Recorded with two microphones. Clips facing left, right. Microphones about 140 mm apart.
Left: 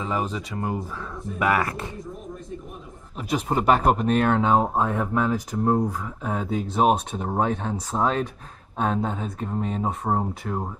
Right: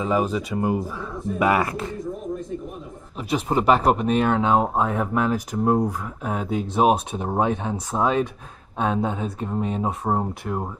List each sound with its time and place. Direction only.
0.0 s speech: 10° right (ahead or behind)
1.4 s speech: 20° right (ahead or behind)
3.4 s speech: 5° right (ahead or behind)